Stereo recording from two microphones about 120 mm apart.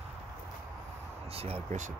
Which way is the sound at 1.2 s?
55° right (ahead or behind).